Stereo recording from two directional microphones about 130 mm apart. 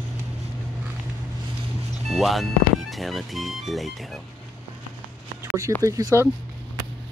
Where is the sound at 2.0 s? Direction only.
Centre (ahead or behind).